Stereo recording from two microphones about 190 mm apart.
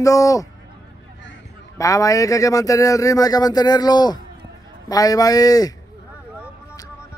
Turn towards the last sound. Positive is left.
turn(degrees=20)  # may be behind; listen again after turning